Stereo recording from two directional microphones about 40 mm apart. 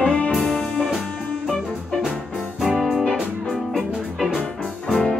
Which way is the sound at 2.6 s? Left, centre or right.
Centre.